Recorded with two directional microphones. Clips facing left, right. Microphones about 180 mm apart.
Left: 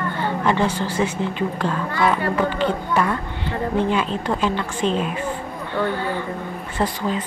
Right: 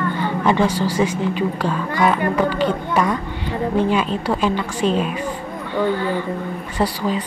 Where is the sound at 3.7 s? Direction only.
10° right (ahead or behind).